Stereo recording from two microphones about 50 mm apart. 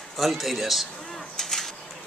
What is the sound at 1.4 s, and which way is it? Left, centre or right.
Bird, centre.